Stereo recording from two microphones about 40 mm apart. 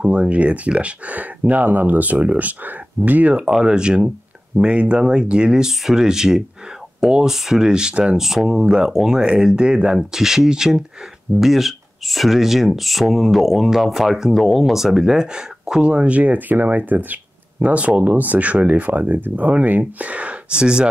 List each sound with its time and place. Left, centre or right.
0.1 s speech: right
3.4 s speech: centre
9.6 s speech: right
10.1 s speech: centre
15.8 s speech: right